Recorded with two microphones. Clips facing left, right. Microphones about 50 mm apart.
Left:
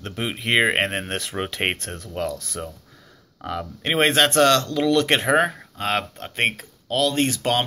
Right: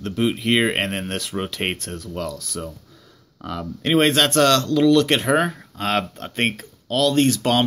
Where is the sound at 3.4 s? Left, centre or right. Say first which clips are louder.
Right 2 dB; centre.